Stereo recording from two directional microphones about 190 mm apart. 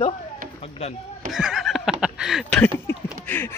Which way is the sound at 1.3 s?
Centre (ahead or behind).